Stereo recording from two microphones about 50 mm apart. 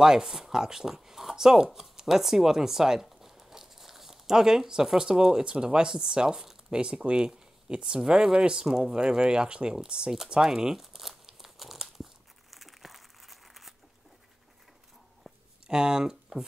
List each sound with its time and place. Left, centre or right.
0.0 s speech: centre
10.3 s crumpling: centre
15.6 s speech: centre